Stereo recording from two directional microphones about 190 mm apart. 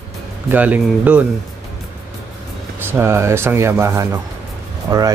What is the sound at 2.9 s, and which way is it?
Speech, 15° right (ahead or behind).